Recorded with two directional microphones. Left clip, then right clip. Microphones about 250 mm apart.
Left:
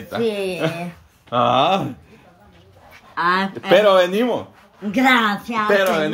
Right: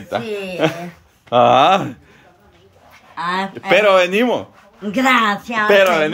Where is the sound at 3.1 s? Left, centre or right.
Centre.